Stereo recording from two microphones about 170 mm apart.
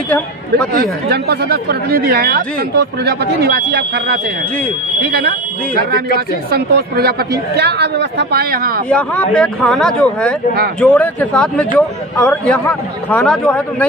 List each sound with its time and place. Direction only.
0.7 s speech: 65° right (ahead or behind)
6.5 s speech: 65° right (ahead or behind)
8.8 s a man's voice: 5° left (ahead or behind)